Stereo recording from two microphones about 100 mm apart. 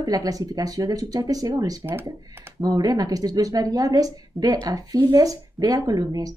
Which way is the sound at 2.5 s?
40° right (ahead or behind).